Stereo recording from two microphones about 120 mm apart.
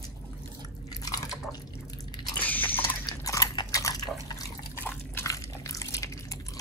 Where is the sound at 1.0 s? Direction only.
30° left (ahead or behind).